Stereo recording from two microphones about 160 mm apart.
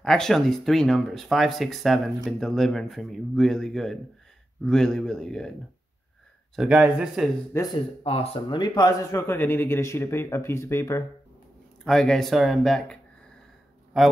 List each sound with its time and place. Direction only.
0.0 s speech: 5° left (ahead or behind)
6.5 s speech: 5° right (ahead or behind)
7.5 s speech: 25° left (ahead or behind)
8.0 s speech: 35° left (ahead or behind)
9.2 s speech: 15° left (ahead or behind)
11.8 s speech: 5° left (ahead or behind)